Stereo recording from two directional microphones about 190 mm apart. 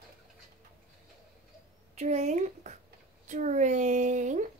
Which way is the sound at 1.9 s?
35° right (ahead or behind).